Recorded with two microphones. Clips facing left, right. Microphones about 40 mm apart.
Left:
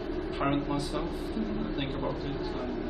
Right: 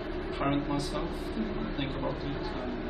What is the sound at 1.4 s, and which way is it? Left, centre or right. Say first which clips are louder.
A man's voice: left 1 dB; centre.